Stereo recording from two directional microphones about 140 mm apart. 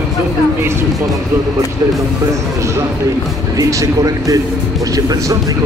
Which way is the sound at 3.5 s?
25° right (ahead or behind).